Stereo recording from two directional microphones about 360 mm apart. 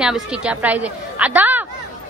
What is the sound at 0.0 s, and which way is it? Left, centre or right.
A woman's voice, centre.